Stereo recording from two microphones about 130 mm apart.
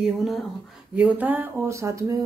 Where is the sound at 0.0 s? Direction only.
Centre (ahead or behind).